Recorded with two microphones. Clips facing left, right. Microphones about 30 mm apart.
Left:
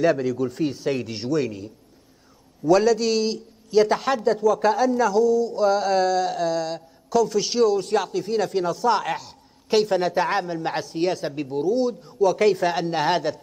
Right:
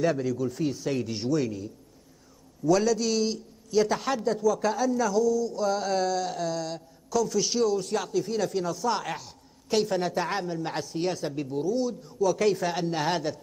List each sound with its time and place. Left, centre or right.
0.0 s a man's voice: centre
5.8 s a man's voice: centre
9.0 s speech: centre
9.7 s a man's voice: left